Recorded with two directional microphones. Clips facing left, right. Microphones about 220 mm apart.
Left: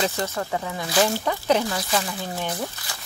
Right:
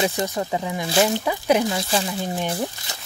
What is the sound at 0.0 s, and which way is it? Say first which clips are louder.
Speech: right 3 dB; 15° right (ahead or behind).